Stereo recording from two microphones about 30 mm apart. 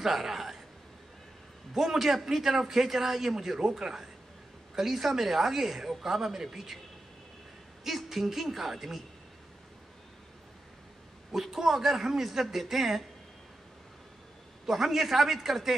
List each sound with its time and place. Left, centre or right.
0.0 s a man's voice: centre
1.7 s a man's voice: centre
7.8 s speech: centre
11.3 s speech: centre
14.7 s speech: centre